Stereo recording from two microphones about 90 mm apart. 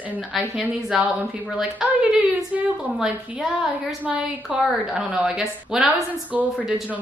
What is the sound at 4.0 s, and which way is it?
A woman's voice, 15° right (ahead or behind).